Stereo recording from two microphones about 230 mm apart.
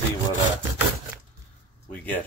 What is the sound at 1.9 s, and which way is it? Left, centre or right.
Speech, centre.